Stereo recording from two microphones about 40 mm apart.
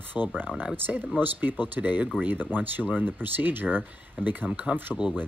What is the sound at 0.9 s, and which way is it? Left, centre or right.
Speech, right.